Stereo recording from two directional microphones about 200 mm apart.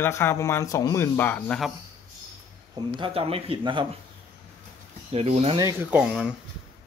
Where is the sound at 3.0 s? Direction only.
30° right (ahead or behind).